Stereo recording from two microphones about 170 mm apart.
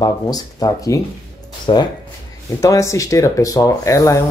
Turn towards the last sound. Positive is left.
turn(degrees=20)  # may be behind; listen again after turning